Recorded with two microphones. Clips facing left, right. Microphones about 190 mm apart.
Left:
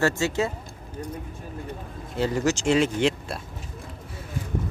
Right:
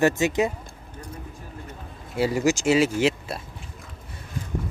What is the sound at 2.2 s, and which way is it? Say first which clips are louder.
Speech: right 2 dB; 10° right (ahead or behind).